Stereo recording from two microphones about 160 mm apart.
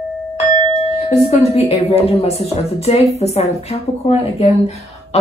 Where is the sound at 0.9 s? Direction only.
40° left (ahead or behind).